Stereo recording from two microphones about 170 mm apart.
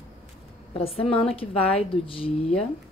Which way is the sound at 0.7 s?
35° left (ahead or behind).